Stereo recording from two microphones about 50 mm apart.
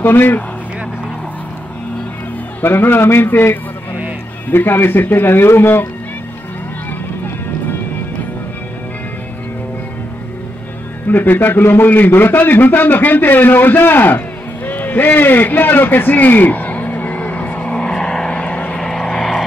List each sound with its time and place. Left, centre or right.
0.0 s speech: left
2.6 s speech: left
11.1 s a man's voice: left
18.0 s vehicle: centre
18.4 s vehicle: left
18.8 s vehicle: centre